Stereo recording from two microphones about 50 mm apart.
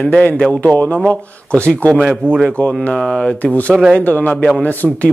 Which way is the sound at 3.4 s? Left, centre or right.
Left.